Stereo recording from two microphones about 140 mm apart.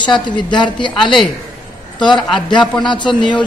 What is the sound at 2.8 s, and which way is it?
Speech, 35° left (ahead or behind).